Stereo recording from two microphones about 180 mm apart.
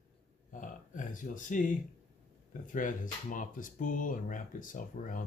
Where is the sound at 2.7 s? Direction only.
45° left (ahead or behind).